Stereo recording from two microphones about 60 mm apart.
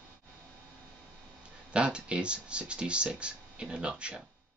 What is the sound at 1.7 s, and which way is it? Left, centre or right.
Speech, centre.